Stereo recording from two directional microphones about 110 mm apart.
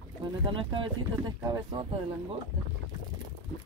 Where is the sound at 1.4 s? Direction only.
35° right (ahead or behind).